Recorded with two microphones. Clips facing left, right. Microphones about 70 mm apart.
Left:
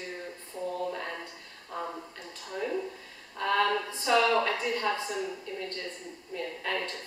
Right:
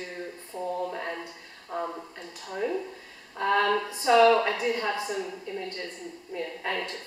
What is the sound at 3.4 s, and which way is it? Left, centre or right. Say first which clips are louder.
A woman's voice: right 3 dB; centre.